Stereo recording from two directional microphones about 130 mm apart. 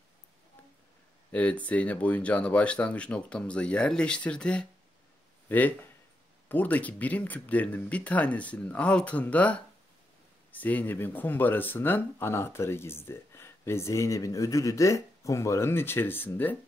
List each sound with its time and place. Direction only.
1.3 s speech: 10° left (ahead or behind)